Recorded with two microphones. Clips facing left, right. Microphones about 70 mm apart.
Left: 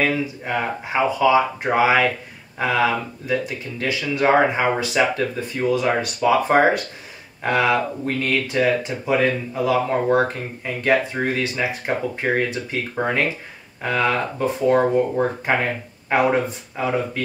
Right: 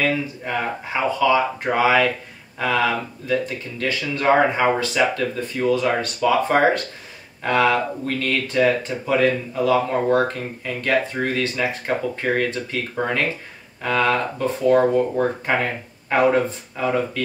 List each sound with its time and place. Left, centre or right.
1.2 s speech: centre